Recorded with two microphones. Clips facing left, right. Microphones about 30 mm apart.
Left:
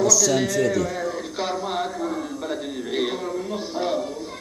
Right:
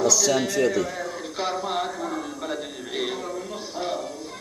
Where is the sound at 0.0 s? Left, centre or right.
Centre.